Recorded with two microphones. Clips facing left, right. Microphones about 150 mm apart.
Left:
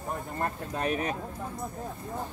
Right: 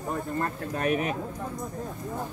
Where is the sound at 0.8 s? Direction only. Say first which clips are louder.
Right 3 dB; 35° left (ahead or behind).